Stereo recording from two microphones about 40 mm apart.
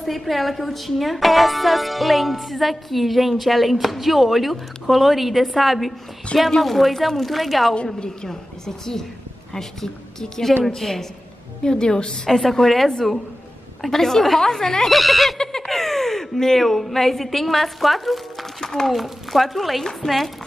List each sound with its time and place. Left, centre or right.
0.0 s speech: centre
7.7 s a woman's voice: left
8.3 s a woman's voice: centre
12.3 s a woman's voice: centre
14.9 s speech: centre
15.3 s a sound: centre
15.6 s a woman's voice: centre
18.6 s a woman's voice: centre
18.9 s speech: centre
19.8 s a woman's voice: centre